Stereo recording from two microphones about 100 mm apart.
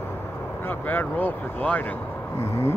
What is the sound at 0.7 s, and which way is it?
Speech, 20° left (ahead or behind).